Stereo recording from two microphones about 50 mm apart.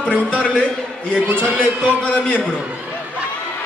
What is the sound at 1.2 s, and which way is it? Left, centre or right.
Speech, right.